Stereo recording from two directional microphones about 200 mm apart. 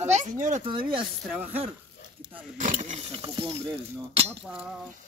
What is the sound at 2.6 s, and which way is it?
Speech, 40° right (ahead or behind).